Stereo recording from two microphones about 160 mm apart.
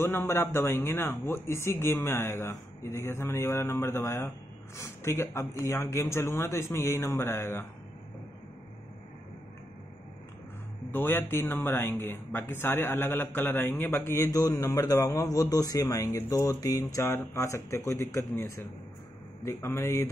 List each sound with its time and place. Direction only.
0.0 s speech: 15° left (ahead or behind)
10.9 s speech: 15° left (ahead or behind)